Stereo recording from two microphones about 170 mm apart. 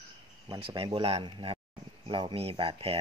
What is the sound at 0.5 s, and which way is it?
Speech, 30° right (ahead or behind).